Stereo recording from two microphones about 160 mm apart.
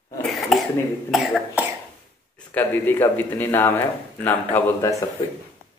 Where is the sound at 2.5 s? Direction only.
10° left (ahead or behind).